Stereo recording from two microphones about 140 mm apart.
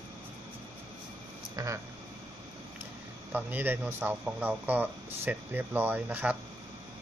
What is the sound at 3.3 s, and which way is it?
Speech, 15° right (ahead or behind).